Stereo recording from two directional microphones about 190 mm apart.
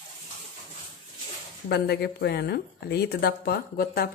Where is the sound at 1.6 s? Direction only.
60° left (ahead or behind).